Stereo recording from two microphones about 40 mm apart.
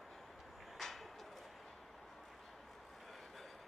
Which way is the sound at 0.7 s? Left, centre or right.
Centre.